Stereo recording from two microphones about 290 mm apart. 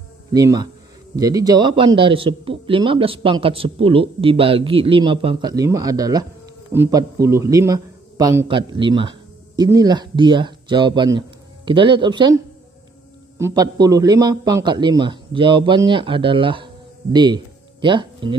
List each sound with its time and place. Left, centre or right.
0.3 s a man's voice: centre
13.4 s a man's voice: centre